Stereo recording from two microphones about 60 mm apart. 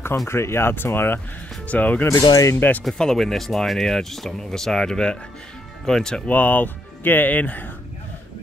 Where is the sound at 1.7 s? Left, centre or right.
Left.